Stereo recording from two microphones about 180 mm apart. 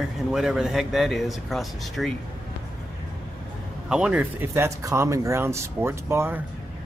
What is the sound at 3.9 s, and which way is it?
Speech, 5° right (ahead or behind).